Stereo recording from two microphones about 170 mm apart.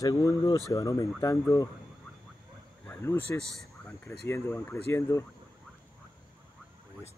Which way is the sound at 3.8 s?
15° left (ahead or behind).